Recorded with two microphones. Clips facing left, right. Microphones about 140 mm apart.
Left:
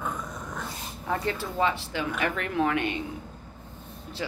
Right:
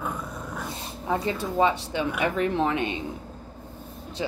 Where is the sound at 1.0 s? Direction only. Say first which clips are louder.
Right 3 dB; 20° right (ahead or behind).